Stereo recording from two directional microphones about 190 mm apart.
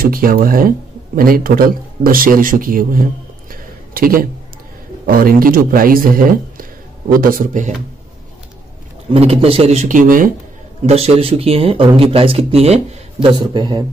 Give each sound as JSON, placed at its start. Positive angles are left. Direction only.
{"t": 0.0, "sound": "speech", "side_deg": -50}
{"t": 3.4, "sound": "a sound", "side_deg": -50}
{"t": 5.0, "sound": "speech", "side_deg": -50}
{"t": 9.1, "sound": "a man's voice", "side_deg": -30}
{"t": 10.9, "sound": "speech", "side_deg": -35}